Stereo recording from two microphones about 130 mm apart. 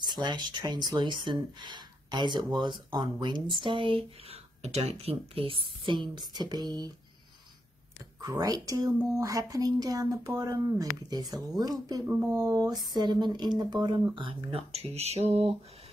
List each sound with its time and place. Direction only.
0.0 s speech: 35° right (ahead or behind); by 5.1 s 55° right (ahead or behind)
5.3 s speech: 45° right (ahead or behind)
8.2 s speech: 30° right (ahead or behind); by 15.5 s 55° right (ahead or behind)